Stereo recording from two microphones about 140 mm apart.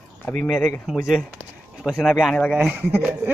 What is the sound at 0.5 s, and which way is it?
Speech, centre (ahead or behind).